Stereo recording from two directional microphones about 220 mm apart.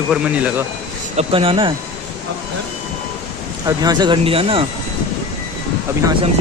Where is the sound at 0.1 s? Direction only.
5° right (ahead or behind).